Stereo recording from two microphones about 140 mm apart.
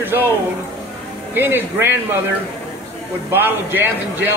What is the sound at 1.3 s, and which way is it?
Speech, 15° right (ahead or behind).